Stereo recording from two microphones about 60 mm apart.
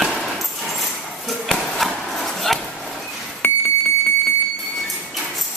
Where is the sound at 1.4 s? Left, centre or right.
Centre.